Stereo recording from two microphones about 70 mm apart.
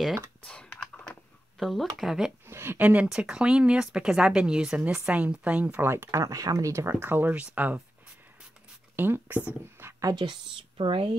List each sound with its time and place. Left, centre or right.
1.6 s speech: centre
2.4 s speech: right
2.8 s speech: right
3.1 s speech: centre
5.9 s speech: right
6.2 s speech: right
6.7 s speech: right
8.9 s speech: right
10.1 s speech: right